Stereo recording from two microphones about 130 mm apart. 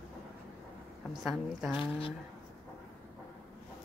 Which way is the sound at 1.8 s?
45° left (ahead or behind).